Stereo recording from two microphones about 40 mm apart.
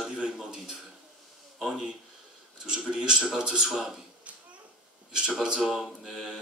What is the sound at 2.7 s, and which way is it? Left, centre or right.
A man's voice, right.